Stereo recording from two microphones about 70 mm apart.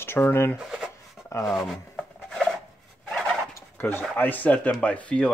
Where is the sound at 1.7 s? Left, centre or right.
Centre.